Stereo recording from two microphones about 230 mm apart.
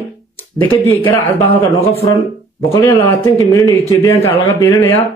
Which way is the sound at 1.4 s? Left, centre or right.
Left.